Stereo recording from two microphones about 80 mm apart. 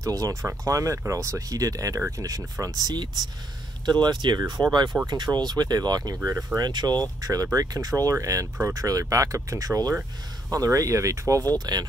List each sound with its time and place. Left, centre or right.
0.0 s speech: right
2.0 s speech: right
2.6 s speech: right
6.7 s speech: right
11.5 s speech: right